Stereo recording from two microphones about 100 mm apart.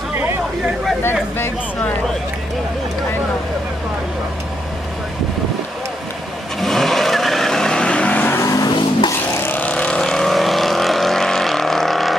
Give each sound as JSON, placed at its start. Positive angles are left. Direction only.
{"t": 6.6, "sound": "vehicle", "side_deg": 5}
{"t": 8.5, "sound": "car", "side_deg": 40}
{"t": 9.4, "sound": "vehicle", "side_deg": 15}